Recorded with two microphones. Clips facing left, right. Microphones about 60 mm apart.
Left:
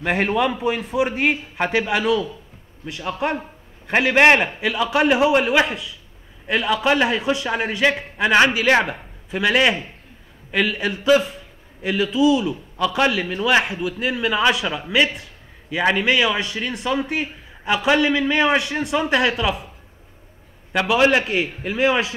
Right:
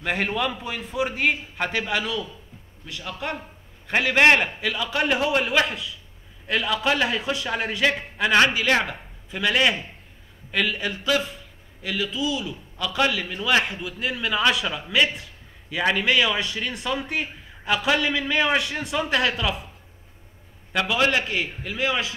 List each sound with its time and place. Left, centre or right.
0.0 s a man's voice: centre
3.8 s a man's voice: centre
20.7 s a man's voice: centre